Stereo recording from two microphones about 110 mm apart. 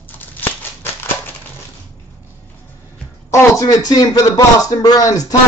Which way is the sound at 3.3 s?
30° left (ahead or behind).